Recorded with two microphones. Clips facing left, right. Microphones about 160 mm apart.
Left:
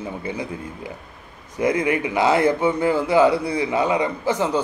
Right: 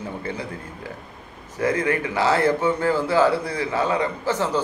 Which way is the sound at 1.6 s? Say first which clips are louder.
Left 2 dB; 15° left (ahead or behind).